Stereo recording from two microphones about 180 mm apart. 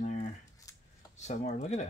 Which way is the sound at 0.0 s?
45° left (ahead or behind).